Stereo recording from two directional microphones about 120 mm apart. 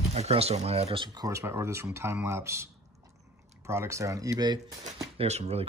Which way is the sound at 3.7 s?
25° right (ahead or behind).